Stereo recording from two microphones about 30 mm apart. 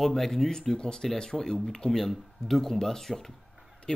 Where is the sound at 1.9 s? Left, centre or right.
Centre.